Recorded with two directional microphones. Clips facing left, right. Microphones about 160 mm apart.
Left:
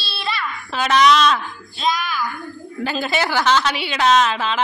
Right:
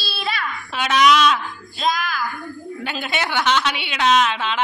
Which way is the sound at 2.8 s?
Centre (ahead or behind).